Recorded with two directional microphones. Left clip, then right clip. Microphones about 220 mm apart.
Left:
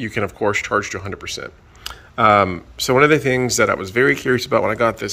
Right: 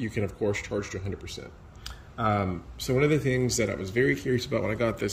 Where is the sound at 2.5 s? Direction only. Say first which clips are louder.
Left 11 dB; centre (ahead or behind).